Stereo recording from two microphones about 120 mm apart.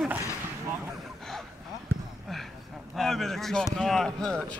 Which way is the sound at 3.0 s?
Centre (ahead or behind).